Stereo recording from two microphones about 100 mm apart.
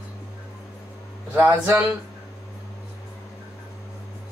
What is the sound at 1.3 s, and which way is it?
Speech, 20° right (ahead or behind).